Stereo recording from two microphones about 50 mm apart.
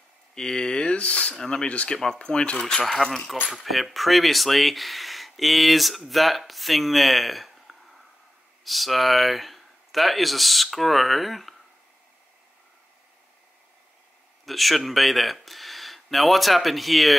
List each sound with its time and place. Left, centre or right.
0.3 s speech: centre
1.4 s speech: centre
1.7 s speech: left; by 11.5 s centre
14.4 s speech: centre